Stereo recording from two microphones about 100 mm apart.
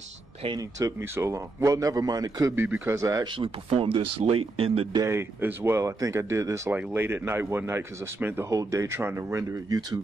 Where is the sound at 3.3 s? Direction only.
60° right (ahead or behind).